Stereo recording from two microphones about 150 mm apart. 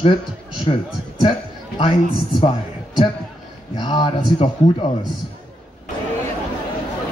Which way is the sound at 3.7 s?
30° left (ahead or behind).